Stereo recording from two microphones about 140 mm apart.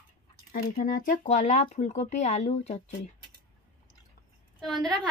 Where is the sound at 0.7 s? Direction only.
75° left (ahead or behind); by 2.8 s 50° left (ahead or behind).